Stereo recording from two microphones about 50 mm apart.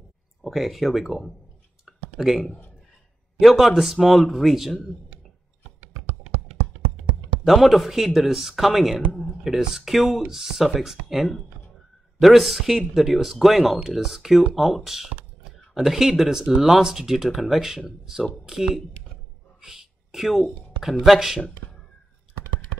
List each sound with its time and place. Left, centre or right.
0.4 s speech: centre
1.9 s a sound: centre
3.3 s speech: centre
7.4 s speech: centre
8.9 s a man's voice: left
9.4 s speech: centre
19.6 s a sound: centre
21.0 s speech: centre